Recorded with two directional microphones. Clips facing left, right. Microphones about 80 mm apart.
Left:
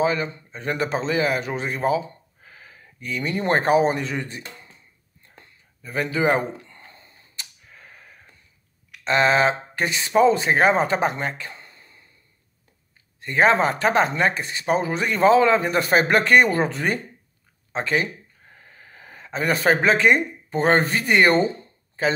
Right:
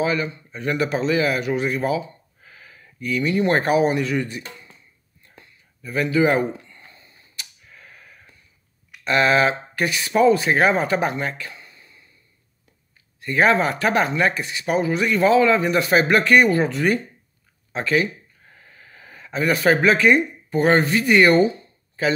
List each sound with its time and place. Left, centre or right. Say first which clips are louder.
0.0 s a man's voice: even; left
5.8 s speech: right 4 dB; left
6.7 s a sound: left 1 dB; left
7.7 s a sound: right 1 dB; left
9.0 s speech: right 1 dB; left
13.2 s speech: even; left